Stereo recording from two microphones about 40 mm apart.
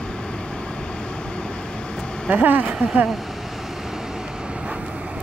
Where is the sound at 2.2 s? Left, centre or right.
Right.